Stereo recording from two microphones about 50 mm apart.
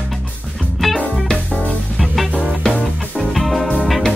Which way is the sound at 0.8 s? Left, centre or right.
Centre.